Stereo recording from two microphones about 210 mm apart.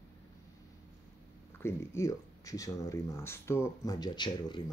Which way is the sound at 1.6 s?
15° left (ahead or behind).